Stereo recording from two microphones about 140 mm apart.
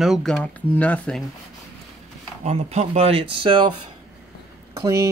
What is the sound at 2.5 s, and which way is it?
Speech, 50° right (ahead or behind).